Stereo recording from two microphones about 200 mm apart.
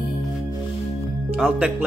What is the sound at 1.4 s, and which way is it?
Music, 5° right (ahead or behind).